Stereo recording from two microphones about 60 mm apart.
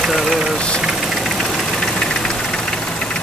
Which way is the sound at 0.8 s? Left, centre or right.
Centre.